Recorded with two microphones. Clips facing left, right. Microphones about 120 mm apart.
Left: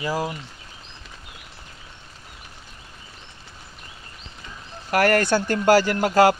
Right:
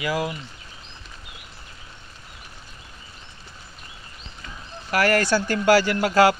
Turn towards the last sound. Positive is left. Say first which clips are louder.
# left 1 dB
turn(degrees=45)  # may be behind; listen again after turning